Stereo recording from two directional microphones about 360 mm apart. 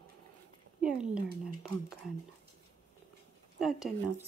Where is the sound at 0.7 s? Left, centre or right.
Centre.